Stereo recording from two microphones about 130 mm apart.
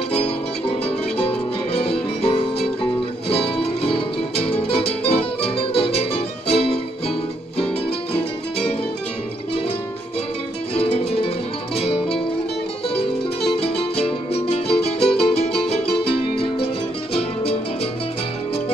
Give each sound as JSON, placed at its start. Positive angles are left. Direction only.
{"t": 1.1, "sound": "music", "side_deg": 50}
{"t": 10.8, "sound": "music", "side_deg": 45}
{"t": 13.6, "sound": "music", "side_deg": 45}